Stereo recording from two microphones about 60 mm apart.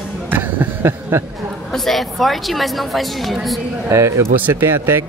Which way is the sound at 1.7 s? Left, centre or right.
Centre.